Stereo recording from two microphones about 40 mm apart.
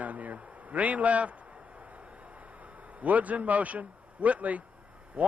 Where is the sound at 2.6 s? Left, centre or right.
Right.